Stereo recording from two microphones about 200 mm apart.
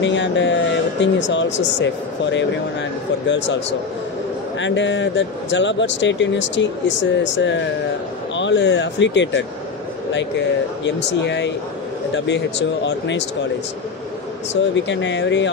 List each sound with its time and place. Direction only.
0.0 s speech: 65° left (ahead or behind)
4.6 s speech: 65° left (ahead or behind)
10.8 s speech: 60° left (ahead or behind)
14.5 s speech: 65° left (ahead or behind)